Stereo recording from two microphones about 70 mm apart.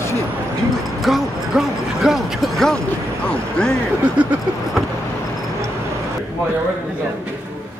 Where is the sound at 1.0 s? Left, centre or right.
Centre.